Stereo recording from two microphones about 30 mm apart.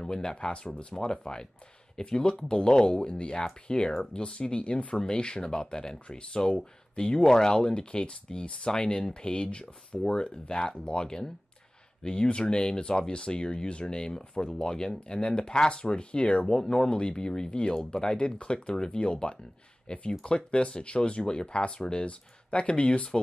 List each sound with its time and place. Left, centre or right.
0.1 s speech: left
4.9 s speech: left
16.4 s speech: left
21.7 s speech: left
22.0 s speech: left